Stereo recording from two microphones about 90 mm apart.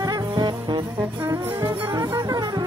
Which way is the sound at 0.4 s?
55° right (ahead or behind).